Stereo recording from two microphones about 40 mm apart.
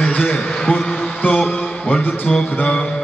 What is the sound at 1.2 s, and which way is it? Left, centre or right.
Music, left.